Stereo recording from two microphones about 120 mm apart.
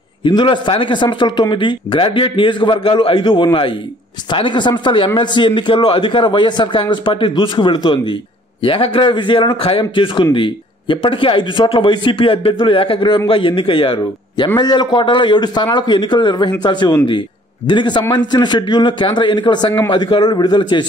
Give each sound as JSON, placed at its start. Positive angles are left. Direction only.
{"t": 0.2, "sound": "a man's voice", "side_deg": 40}